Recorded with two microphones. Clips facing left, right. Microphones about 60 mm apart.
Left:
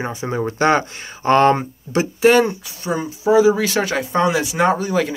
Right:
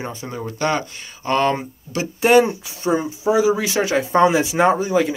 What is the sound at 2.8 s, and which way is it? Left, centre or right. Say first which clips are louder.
Speech: right 3 dB; right.